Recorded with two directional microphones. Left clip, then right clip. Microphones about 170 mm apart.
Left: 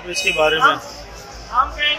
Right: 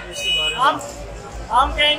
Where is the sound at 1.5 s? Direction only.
25° right (ahead or behind).